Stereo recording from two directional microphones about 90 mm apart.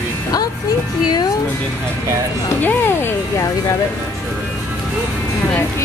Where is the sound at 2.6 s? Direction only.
25° left (ahead or behind).